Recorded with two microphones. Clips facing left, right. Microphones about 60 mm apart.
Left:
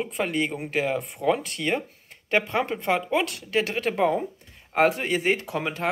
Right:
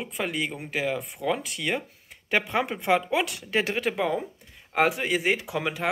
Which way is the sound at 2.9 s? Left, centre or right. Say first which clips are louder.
Left 1 dB; centre.